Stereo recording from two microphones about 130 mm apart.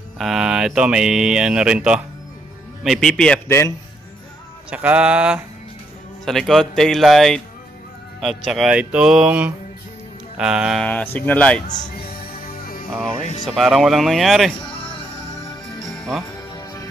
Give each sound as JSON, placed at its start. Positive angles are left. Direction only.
{"t": 0.2, "sound": "speech", "side_deg": -5}
{"t": 3.4, "sound": "a man's voice", "side_deg": 20}
{"t": 4.6, "sound": "a sound", "side_deg": -10}
{"t": 6.2, "sound": "speech", "side_deg": 0}
{"t": 8.5, "sound": "speech", "side_deg": -5}
{"t": 10.9, "sound": "speech", "side_deg": 10}
{"t": 12.9, "sound": "speech", "side_deg": 5}
{"t": 15.8, "sound": "music", "side_deg": 0}